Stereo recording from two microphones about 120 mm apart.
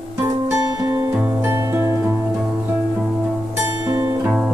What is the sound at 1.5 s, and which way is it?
Music, 20° right (ahead or behind).